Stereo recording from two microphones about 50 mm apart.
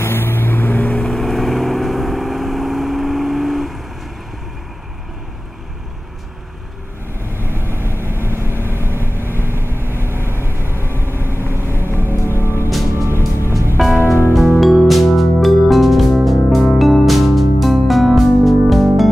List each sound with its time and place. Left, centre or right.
0.0 s vehicle: left
1.0 s vehicle: centre
7.2 s vehicle: right
12.2 s music: left
12.9 s music: right
14.0 s music: left
14.6 s music: centre